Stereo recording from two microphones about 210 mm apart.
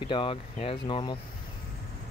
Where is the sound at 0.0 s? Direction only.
25° left (ahead or behind).